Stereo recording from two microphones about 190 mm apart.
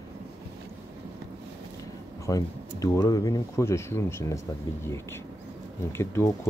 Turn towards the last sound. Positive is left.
turn(degrees=15)  # may be behind; listen again after turning